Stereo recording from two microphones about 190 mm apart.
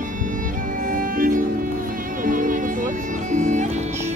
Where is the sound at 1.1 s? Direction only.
45° right (ahead or behind).